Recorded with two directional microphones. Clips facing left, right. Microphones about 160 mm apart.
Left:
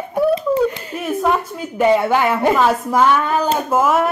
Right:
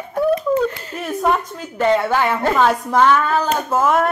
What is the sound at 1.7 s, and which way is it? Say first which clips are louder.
A woman's voice: left 2 dB; 10° left (ahead or behind).